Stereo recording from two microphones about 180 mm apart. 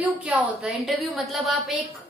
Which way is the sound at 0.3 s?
Centre (ahead or behind).